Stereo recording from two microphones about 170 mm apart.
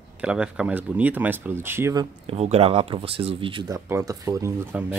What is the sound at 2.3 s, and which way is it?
Speech, 35° right (ahead or behind).